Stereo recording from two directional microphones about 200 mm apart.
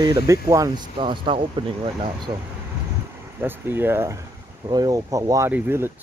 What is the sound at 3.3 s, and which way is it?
Speech, 10° right (ahead or behind).